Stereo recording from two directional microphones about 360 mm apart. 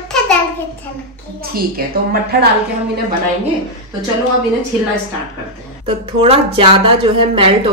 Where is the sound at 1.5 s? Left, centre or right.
Right.